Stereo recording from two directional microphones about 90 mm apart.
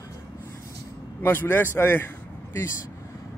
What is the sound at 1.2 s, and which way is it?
Speech, 25° left (ahead or behind).